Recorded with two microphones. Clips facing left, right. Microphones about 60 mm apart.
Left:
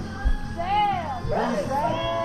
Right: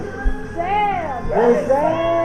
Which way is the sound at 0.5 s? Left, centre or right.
Right.